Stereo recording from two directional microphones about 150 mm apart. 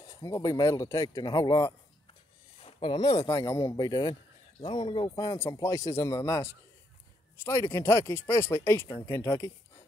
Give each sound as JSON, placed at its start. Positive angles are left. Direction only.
{"t": 0.0, "sound": "speech", "side_deg": 25}